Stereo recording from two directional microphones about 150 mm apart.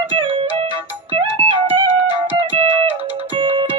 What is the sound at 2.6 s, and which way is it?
Music, 35° right (ahead or behind).